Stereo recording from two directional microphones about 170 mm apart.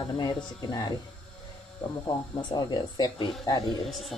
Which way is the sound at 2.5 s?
25° left (ahead or behind).